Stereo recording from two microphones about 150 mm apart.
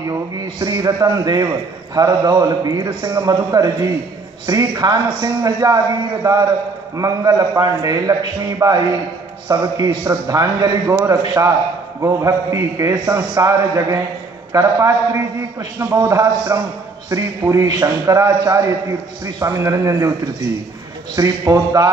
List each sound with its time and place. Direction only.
0.6 s a man's voice: 25° right (ahead or behind)
21.2 s a man's voice: 25° right (ahead or behind)